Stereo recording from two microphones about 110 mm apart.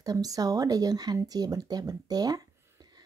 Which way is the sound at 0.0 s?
35° right (ahead or behind).